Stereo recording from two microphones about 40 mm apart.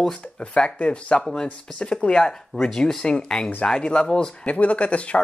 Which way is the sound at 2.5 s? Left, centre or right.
Left.